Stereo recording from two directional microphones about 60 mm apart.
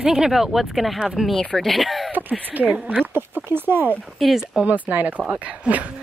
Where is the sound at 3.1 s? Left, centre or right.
Right.